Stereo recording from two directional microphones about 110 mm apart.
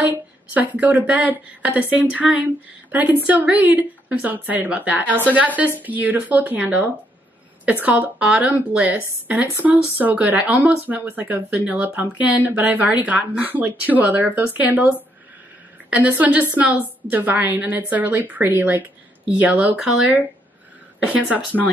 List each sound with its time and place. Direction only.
0.1 s a woman's voice: 15° right (ahead or behind)
21.0 s speech: 10° right (ahead or behind)